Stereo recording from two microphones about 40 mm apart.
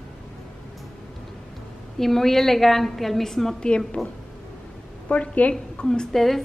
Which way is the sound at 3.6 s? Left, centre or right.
Left.